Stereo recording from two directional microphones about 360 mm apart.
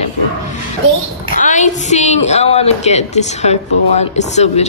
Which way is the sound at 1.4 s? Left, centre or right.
Centre.